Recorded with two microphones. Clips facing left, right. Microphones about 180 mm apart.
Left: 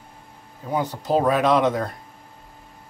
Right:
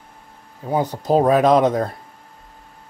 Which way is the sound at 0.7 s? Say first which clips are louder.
Right 4 dB; 40° right (ahead or behind).